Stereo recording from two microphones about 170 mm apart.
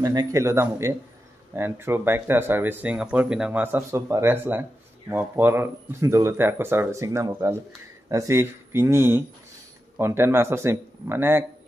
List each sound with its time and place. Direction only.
0.0 s speech: 20° right (ahead or behind)